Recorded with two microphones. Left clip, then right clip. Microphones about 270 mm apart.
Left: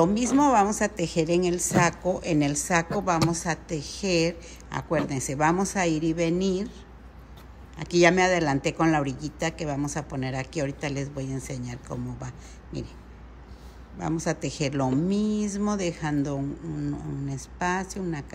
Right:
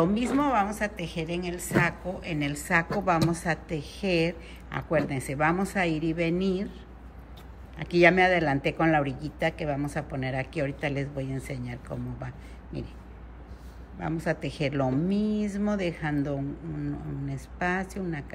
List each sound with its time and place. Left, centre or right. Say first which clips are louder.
0.0 s a woman's voice: left 4 dB; centre
7.7 s a woman's voice: even; centre
13.9 s a woman's voice: left 1 dB; centre